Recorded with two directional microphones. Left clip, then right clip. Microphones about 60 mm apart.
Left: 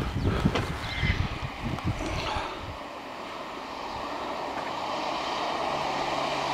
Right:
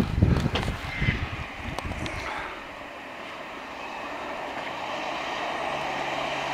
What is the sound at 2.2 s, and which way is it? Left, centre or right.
Vehicle, left.